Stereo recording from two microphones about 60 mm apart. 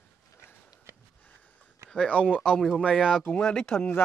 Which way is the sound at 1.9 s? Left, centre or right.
Centre.